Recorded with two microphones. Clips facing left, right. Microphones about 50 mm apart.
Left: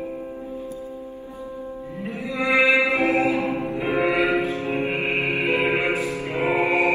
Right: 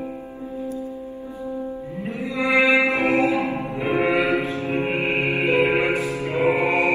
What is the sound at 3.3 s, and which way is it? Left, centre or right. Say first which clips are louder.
Music: even; right.